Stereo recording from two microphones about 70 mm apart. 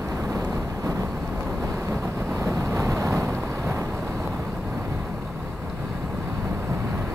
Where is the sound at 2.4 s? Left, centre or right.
Right.